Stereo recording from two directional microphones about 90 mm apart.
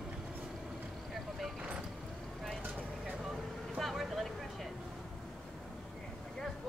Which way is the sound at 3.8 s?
Centre (ahead or behind).